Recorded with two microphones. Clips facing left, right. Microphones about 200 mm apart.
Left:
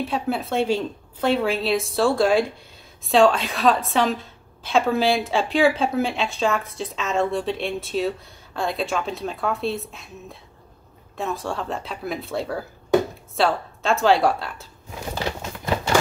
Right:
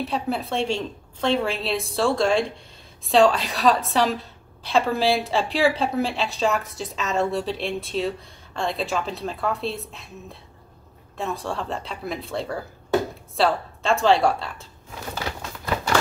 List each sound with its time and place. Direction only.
0.0 s a woman's voice: centre (ahead or behind)
11.1 s a woman's voice: centre (ahead or behind)
15.1 s a sound: 25° left (ahead or behind)